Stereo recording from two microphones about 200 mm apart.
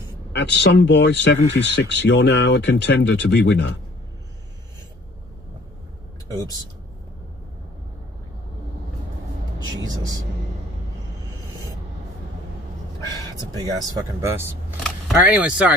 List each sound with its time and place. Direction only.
0.3 s speech: 60° left (ahead or behind)
6.2 s speech: 20° right (ahead or behind)
9.8 s speech: 20° right (ahead or behind)
13.4 s speech: 20° right (ahead or behind)
14.8 s speech: centre (ahead or behind)